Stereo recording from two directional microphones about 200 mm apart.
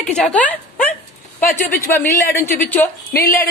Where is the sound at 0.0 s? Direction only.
5° left (ahead or behind).